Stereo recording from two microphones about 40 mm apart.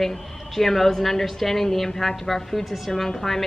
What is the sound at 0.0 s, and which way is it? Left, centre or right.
A woman's voice, centre.